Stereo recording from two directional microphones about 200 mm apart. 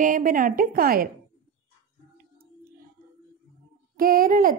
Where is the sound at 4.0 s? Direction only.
45° right (ahead or behind).